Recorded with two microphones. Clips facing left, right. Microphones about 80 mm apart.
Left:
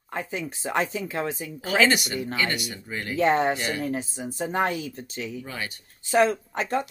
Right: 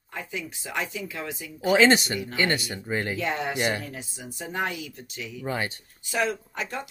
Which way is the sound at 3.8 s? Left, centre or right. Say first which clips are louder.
Left 9 dB; left.